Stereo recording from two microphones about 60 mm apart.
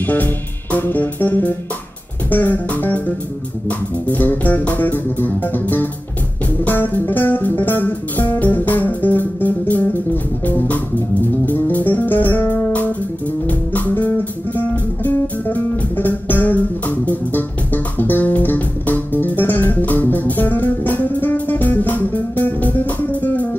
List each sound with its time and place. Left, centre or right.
0.0 s music: left